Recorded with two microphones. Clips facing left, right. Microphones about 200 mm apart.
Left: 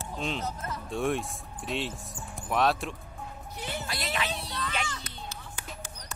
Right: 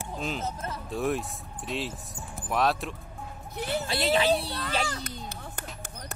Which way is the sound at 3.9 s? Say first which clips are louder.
Right 11 dB; 30° right (ahead or behind).